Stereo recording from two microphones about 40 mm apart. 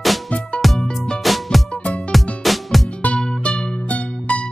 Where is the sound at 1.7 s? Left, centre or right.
Left.